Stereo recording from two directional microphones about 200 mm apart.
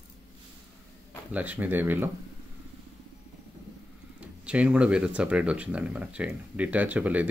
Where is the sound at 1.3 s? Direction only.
10° right (ahead or behind).